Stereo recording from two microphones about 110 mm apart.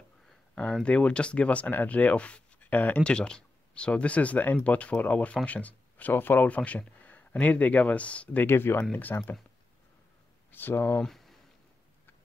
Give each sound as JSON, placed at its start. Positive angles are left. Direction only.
{"t": 0.8, "sound": "speech", "side_deg": 10}
{"t": 10.5, "sound": "speech", "side_deg": 20}
{"t": 11.0, "sound": "speech", "side_deg": 0}